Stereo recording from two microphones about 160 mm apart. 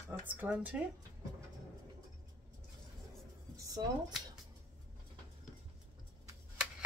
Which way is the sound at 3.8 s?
25° right (ahead or behind).